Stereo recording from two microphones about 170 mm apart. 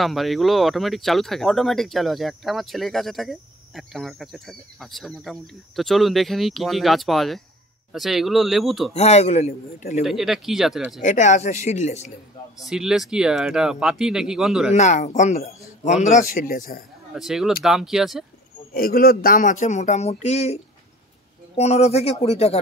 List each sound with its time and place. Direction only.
0.0 s speech: centre (ahead or behind)
8.9 s a man's voice: 40° left (ahead or behind)
10.0 s speech: centre (ahead or behind)
11.0 s speech: 45° left (ahead or behind)
12.5 s speech: 5° right (ahead or behind)
14.8 s speech: 45° left (ahead or behind)
17.1 s speech: centre (ahead or behind)
18.7 s speech: 60° left (ahead or behind); by 20.5 s 40° left (ahead or behind)
21.5 s a man's voice: 40° left (ahead or behind)